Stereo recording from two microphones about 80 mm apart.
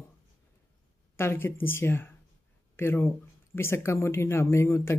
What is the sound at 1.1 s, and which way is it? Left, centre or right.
Speech, left.